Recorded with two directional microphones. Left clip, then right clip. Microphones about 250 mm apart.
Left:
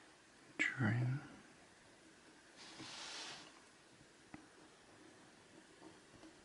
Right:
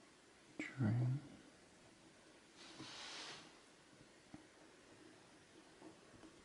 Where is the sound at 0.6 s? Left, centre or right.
Centre.